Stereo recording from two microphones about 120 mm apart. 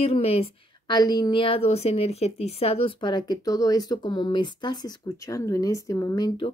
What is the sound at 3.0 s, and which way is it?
Speech, 40° left (ahead or behind).